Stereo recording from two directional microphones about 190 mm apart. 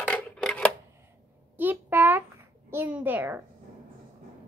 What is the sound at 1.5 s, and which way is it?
A child's voice, 10° right (ahead or behind).